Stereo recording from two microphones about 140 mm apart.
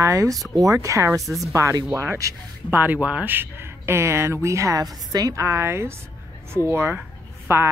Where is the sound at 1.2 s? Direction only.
Centre (ahead or behind).